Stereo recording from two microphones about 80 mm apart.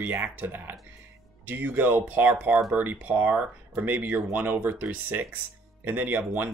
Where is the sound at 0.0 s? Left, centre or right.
Right.